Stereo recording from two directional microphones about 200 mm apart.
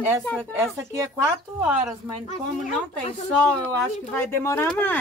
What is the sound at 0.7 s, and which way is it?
Speech, 15° right (ahead or behind).